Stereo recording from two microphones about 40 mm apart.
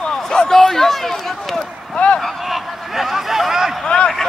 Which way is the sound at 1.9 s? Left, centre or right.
Left.